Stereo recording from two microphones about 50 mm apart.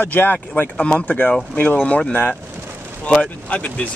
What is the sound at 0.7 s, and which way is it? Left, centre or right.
Speech, left.